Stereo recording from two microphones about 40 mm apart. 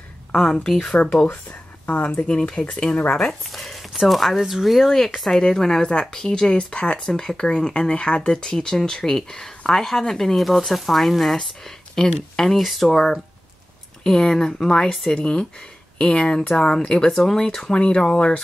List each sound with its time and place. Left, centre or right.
0.3 s speech: centre
1.1 s speech: left
2.2 s speech: left
3.4 s a sound: centre
3.9 s speech: centre; by 7.0 s left
7.0 s speech: centre
12.5 s speech: centre
14.0 s speech: centre
17.7 s speech: left